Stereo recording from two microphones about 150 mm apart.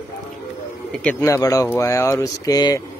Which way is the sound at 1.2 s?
20° left (ahead or behind).